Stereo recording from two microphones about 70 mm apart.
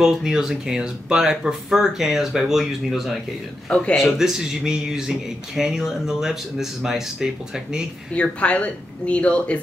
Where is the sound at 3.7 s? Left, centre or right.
Centre.